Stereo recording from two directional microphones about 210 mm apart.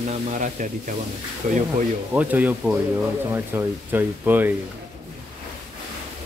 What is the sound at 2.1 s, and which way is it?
Speech, 10° right (ahead or behind).